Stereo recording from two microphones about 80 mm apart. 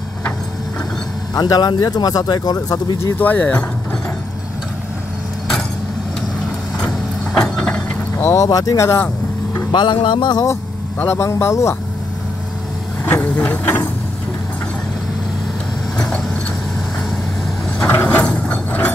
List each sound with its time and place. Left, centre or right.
1.3 s speech: left
3.2 s speech: left
7.3 s vehicle: centre
8.4 s speech: left
8.8 s vehicle: left
9.7 s speech: left
11.1 s a man's voice: left
13.0 s a sound: left
17.7 s mechanisms: centre